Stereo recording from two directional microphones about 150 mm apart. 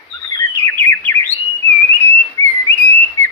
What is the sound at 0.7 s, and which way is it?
Chirp, 10° left (ahead or behind).